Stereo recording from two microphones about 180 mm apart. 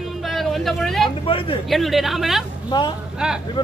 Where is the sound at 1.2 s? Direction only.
30° left (ahead or behind).